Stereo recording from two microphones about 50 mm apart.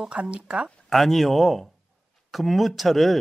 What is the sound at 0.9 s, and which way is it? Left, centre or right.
Speech, centre.